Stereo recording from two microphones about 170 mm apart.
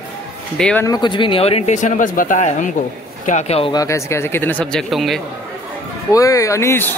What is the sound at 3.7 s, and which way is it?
A man's voice, 15° left (ahead or behind).